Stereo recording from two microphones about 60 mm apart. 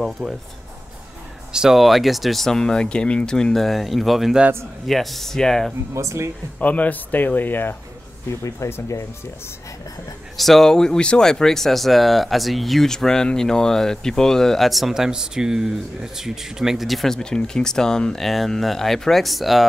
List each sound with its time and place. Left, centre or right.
0.0 s speech: centre
1.5 s speech: centre
5.9 s speech: right
6.6 s speech: left
8.3 s speech: left
10.3 s speech: centre